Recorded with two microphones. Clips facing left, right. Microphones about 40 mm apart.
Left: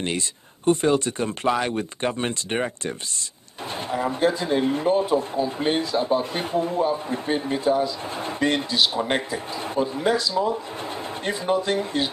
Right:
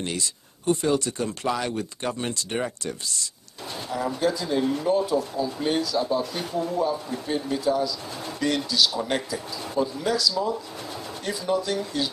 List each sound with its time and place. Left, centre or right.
0.7 s speech: left